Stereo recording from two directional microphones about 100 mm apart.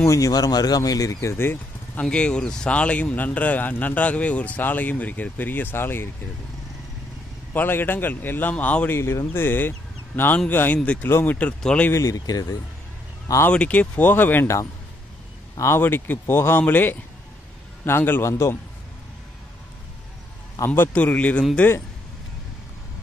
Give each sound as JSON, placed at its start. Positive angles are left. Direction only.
{"t": 0.0, "sound": "speech", "side_deg": 30}
{"t": 2.0, "sound": "speech", "side_deg": 10}
{"t": 7.5, "sound": "speech", "side_deg": 20}
{"t": 11.9, "sound": "speech", "side_deg": 35}
{"t": 13.5, "sound": "speech", "side_deg": 15}
{"t": 20.6, "sound": "speech", "side_deg": 20}